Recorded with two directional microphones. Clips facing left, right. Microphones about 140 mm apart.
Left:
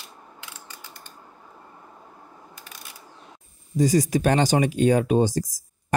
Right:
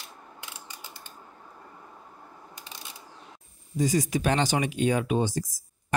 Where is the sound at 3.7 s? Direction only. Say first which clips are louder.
Left 5 dB; 40° left (ahead or behind).